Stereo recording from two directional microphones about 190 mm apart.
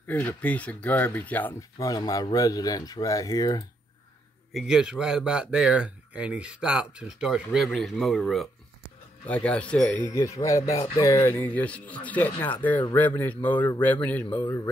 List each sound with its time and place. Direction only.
0.0 s speech: 10° left (ahead or behind)
4.6 s speech: 5° right (ahead or behind); by 14.7 s 20° left (ahead or behind)